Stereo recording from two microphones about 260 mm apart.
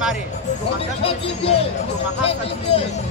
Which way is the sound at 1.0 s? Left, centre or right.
Left.